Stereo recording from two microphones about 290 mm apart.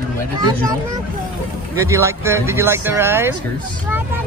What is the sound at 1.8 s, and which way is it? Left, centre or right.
Speech, centre.